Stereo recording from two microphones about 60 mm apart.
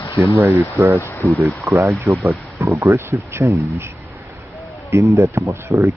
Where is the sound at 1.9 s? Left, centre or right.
Right.